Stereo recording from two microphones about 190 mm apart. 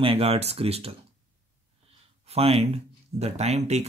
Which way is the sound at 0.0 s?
30° right (ahead or behind).